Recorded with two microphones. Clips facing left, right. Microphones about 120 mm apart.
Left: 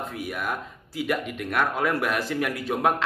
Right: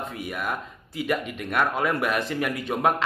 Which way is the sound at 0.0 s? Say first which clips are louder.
Even; centre (ahead or behind).